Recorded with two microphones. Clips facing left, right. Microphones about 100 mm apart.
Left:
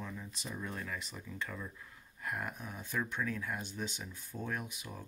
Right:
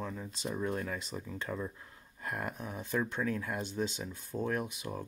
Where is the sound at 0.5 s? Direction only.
25° right (ahead or behind).